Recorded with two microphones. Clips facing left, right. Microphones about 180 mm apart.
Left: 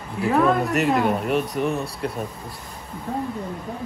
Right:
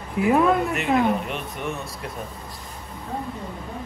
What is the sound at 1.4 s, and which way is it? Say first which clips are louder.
Speech: left 6 dB; 35° left (ahead or behind).